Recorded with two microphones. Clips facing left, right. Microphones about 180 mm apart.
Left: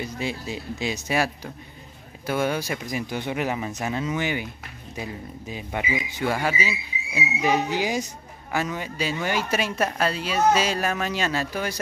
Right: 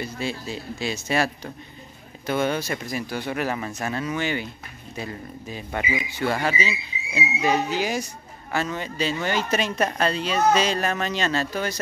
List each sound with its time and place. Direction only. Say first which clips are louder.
0.0 s speech: even; 15° left (ahead or behind)